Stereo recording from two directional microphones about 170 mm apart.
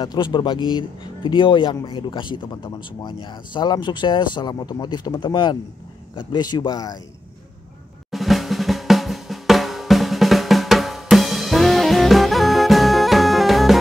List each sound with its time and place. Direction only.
0.0 s speech: 25° left (ahead or behind)
8.1 s drum: centre (ahead or behind)